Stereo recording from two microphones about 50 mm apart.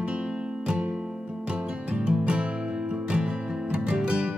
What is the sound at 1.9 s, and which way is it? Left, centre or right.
Music, centre.